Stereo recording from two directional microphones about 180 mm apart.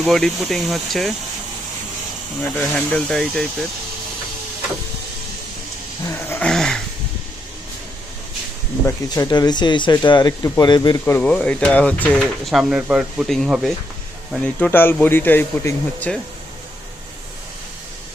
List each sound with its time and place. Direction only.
0.0 s speech: centre (ahead or behind)
2.5 s speech: 5° left (ahead or behind)
6.0 s dog: 15° left (ahead or behind)
8.8 s speech: 20° left (ahead or behind)
11.1 s speech: 5° left (ahead or behind)